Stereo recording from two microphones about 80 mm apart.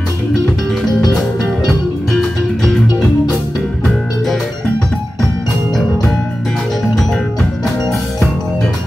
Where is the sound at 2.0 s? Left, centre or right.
Centre.